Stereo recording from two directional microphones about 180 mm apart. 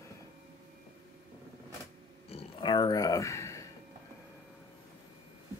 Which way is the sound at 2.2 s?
30° left (ahead or behind).